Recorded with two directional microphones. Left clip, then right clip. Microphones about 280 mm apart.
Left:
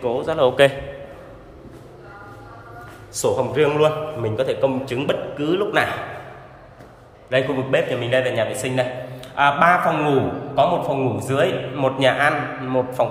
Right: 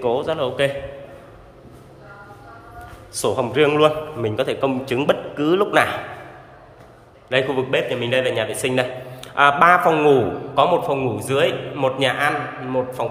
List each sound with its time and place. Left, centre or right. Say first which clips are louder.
0.0 s a man's voice: left 2 dB; centre
3.2 s a man's voice: even; centre
7.2 s a man's voice: even; centre